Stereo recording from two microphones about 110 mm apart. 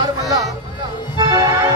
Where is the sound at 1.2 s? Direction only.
35° right (ahead or behind).